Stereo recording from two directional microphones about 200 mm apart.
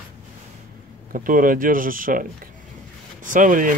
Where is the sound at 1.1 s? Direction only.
45° right (ahead or behind).